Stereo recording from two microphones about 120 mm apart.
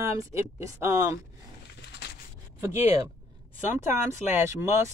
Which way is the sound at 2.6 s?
20° right (ahead or behind).